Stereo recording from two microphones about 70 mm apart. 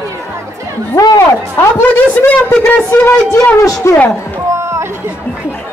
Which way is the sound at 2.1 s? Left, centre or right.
Left.